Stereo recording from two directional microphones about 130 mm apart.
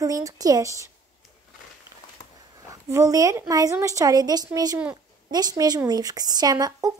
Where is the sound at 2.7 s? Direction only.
25° right (ahead or behind).